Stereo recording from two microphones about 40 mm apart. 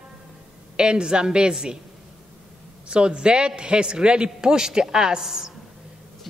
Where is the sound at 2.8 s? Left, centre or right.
Right.